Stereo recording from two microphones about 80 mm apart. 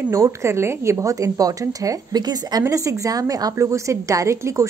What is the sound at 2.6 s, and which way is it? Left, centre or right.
Speech, right.